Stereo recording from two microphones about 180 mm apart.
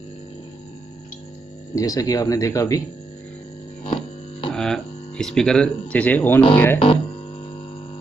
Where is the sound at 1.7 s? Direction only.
20° left (ahead or behind).